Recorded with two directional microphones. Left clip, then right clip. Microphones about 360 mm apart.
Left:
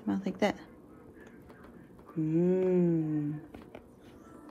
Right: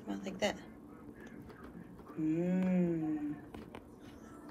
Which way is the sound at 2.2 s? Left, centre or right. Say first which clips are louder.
Left 7 dB; centre.